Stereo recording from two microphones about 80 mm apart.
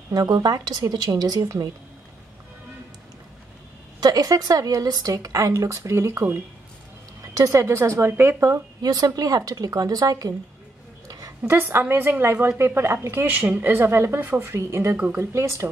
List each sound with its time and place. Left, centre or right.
0.1 s a woman's voice: right
4.0 s a woman's voice: right
8.8 s a woman's voice: right
11.1 s a sound: right
11.4 s a woman's voice: right
15.0 s speech: right
15.3 s a woman's voice: right